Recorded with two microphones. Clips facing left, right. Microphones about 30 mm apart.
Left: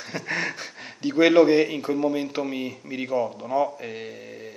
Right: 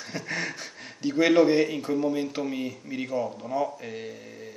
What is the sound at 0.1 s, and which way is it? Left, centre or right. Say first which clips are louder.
A man's voice: left 4 dB; centre.